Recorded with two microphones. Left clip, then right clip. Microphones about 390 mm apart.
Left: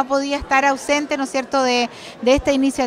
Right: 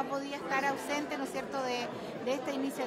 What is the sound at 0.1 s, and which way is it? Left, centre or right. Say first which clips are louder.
A woman's voice: left 16 dB; left.